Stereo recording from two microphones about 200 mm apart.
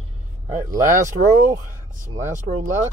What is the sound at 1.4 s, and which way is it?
Speech, 40° right (ahead or behind).